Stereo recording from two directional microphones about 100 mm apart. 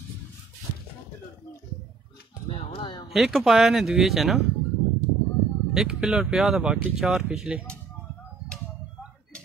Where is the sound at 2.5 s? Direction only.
75° left (ahead or behind); by 3.0 s 55° left (ahead or behind).